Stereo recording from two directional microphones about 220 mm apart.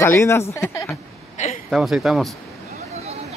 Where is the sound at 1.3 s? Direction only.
35° left (ahead or behind).